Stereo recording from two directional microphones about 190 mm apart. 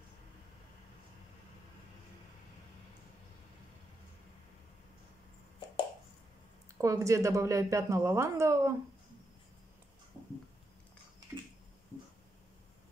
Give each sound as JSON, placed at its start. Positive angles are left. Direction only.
{"t": 6.8, "sound": "speech", "side_deg": -15}